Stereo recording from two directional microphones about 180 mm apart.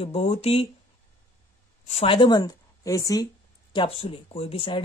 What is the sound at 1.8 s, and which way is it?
Speech, 35° left (ahead or behind).